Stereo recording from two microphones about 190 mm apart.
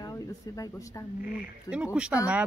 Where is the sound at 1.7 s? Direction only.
5° right (ahead or behind).